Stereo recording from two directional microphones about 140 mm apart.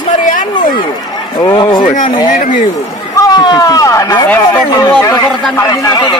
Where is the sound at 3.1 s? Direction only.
25° left (ahead or behind).